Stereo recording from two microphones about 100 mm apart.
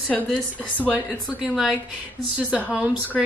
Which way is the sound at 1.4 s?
10° right (ahead or behind).